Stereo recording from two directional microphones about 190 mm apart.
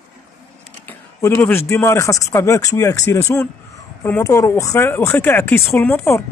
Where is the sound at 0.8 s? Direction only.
10° left (ahead or behind).